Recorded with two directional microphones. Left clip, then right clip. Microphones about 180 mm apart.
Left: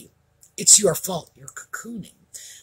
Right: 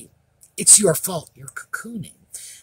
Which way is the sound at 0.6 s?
50° right (ahead or behind).